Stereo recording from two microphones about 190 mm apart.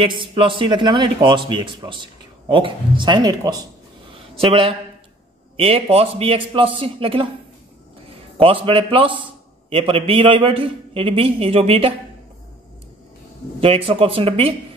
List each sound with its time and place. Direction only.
0.0 s a man's voice: 25° right (ahead or behind)
13.6 s a man's voice: 30° right (ahead or behind)